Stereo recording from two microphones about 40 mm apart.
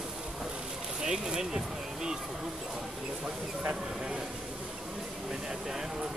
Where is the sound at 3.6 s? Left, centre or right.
Right.